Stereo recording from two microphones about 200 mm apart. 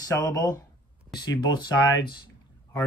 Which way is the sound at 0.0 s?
15° left (ahead or behind).